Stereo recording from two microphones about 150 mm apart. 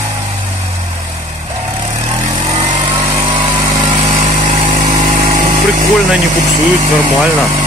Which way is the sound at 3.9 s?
50° right (ahead or behind).